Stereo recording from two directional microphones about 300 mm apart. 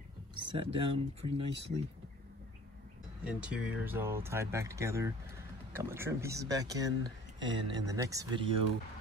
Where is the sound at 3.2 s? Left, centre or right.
Centre.